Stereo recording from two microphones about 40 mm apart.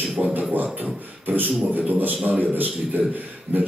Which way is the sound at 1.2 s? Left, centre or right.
Right.